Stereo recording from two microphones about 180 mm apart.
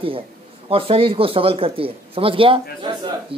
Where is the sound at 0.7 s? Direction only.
30° right (ahead or behind).